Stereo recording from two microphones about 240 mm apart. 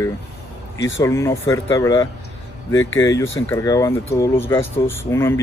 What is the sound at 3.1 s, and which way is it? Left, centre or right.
Speech, centre.